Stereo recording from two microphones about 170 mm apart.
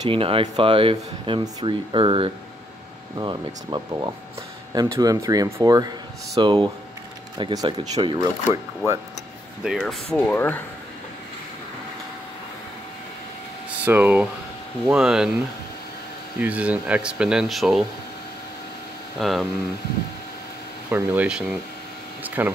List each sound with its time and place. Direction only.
0.0 s speech: 30° right (ahead or behind)
9.6 s speech: centre (ahead or behind)
10.1 s speech: 10° left (ahead or behind)
13.8 s speech: 10° right (ahead or behind)
16.3 s speech: 10° right (ahead or behind)
19.1 s speech: centre (ahead or behind)
20.9 s speech: 10° right (ahead or behind)